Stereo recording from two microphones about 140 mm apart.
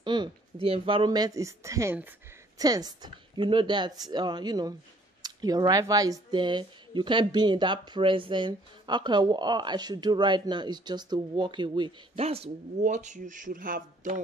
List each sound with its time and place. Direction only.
0.0 s speech: 35° right (ahead or behind)
12.2 s speech: 45° right (ahead or behind)
12.8 s speech: 60° right (ahead or behind)